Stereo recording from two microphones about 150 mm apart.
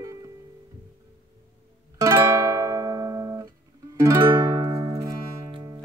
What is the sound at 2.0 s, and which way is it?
Music, 20° right (ahead or behind).